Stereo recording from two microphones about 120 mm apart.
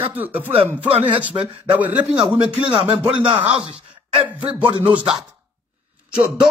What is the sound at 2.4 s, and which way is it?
Speech, 45° right (ahead or behind).